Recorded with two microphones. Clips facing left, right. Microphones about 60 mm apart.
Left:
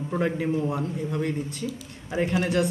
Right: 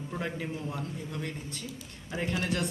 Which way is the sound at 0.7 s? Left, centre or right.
Centre.